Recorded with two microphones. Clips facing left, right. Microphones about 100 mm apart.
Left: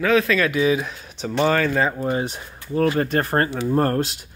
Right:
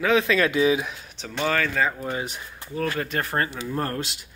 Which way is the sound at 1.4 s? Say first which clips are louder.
Left 4 dB; 30° left (ahead or behind).